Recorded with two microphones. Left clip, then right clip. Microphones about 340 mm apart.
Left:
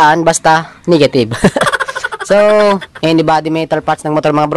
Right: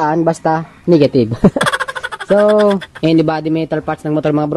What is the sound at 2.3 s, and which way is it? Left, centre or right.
Speech, left.